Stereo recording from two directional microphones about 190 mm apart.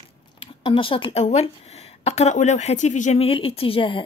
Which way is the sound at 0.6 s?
25° left (ahead or behind).